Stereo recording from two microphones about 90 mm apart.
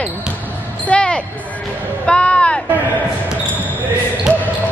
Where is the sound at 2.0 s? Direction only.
10° left (ahead or behind).